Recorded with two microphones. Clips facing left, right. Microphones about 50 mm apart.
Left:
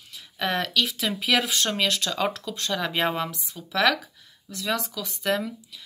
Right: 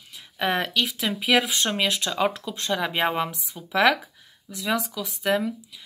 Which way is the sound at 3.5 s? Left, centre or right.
Right.